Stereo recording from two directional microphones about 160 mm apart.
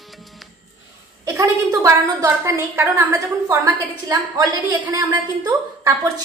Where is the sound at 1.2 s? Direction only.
20° right (ahead or behind).